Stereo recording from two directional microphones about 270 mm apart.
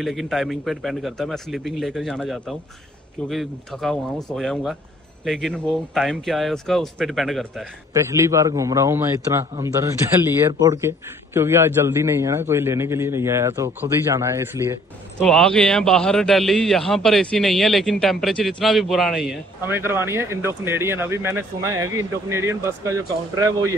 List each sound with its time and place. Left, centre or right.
0.0 s a man's voice: centre
7.9 s a man's voice: centre
15.1 s a man's voice: centre